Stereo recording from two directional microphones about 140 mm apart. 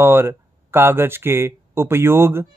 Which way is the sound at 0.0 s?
15° right (ahead or behind).